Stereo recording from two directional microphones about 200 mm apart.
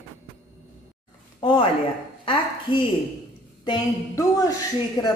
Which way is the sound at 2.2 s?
25° left (ahead or behind).